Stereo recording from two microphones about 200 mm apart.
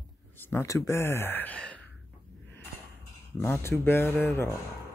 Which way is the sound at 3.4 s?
10° left (ahead or behind).